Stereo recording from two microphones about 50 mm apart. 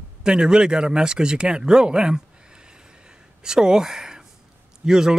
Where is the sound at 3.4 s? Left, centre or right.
Centre.